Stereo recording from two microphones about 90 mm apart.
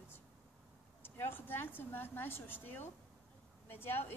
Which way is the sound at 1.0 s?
25° left (ahead or behind).